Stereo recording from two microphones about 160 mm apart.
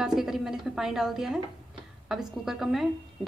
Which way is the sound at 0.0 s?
5° right (ahead or behind).